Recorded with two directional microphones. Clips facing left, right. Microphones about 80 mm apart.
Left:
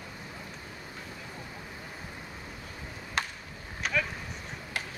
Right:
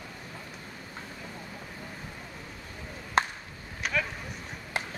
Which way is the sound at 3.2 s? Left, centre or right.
Right.